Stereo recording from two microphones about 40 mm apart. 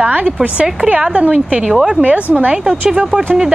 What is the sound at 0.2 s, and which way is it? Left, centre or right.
Speech, right.